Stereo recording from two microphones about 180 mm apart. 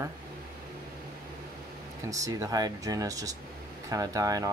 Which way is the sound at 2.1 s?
20° right (ahead or behind).